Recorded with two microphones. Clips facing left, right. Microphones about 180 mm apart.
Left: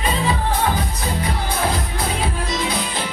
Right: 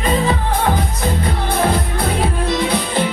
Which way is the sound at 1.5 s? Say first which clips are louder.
Right 7 dB; 55° right (ahead or behind).